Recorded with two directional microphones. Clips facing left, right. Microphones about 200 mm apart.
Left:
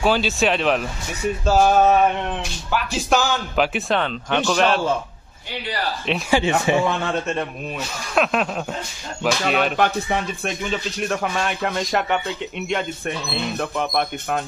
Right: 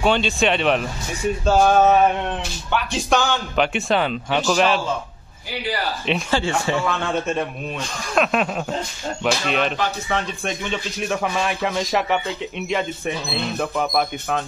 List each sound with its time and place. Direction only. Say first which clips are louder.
0.0 s speech: even; centre (ahead or behind)
6.3 s speech: left 5 dB; 20° left (ahead or behind)
7.1 s speech: right 1 dB; centre (ahead or behind)
10.1 s speech: left 1 dB; 15° left (ahead or behind)
10.4 s speech: left 1 dB; centre (ahead or behind)